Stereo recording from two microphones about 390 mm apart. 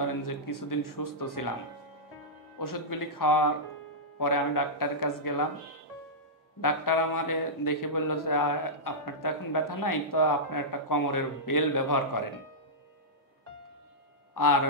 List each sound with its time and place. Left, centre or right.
0.0 s a man's voice: left
2.6 s a man's voice: left
6.6 s a man's voice: left
14.3 s a man's voice: left